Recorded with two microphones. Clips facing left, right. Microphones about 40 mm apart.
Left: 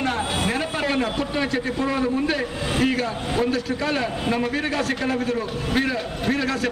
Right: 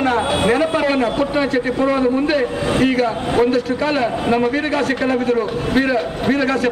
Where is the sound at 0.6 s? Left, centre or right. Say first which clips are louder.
Right 7 dB; centre.